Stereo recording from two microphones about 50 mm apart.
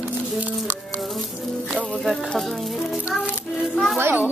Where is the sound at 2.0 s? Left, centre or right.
Centre.